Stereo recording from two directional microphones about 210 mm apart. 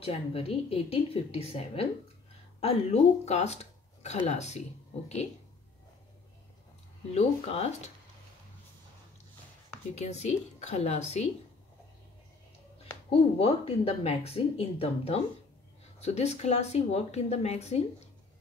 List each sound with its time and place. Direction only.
0.0 s a woman's voice: 25° left (ahead or behind)
7.2 s a woman's voice: 30° left (ahead or behind)
9.9 s speech: 30° left (ahead or behind)
13.1 s a woman's voice: 30° left (ahead or behind)